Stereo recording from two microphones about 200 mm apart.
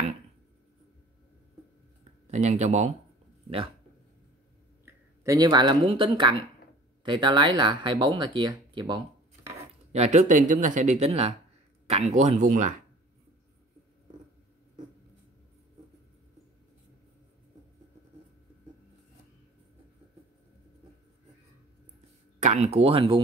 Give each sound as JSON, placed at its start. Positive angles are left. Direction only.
{"t": 2.2, "sound": "speech", "side_deg": -35}
{"t": 5.2, "sound": "speech", "side_deg": -15}
{"t": 9.9, "sound": "speech", "side_deg": -35}
{"t": 22.4, "sound": "speech", "side_deg": -35}